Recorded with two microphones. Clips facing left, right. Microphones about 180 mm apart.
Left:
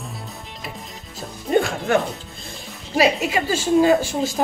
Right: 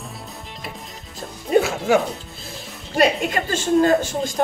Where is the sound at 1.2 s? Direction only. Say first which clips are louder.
Right 1 dB; 5° right (ahead or behind).